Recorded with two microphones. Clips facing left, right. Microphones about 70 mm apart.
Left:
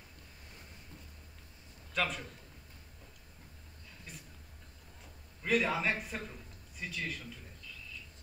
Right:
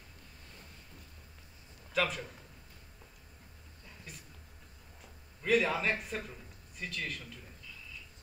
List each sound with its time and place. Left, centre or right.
2.0 s a man's voice: centre
4.1 s a sound: centre
5.4 s a man's voice: centre